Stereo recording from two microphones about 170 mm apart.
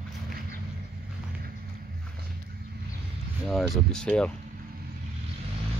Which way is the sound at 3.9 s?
5° left (ahead or behind).